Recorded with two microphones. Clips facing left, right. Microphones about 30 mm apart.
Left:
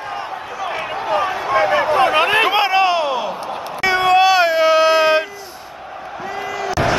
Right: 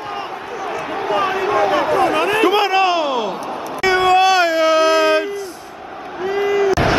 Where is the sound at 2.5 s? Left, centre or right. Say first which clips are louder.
Even; centre.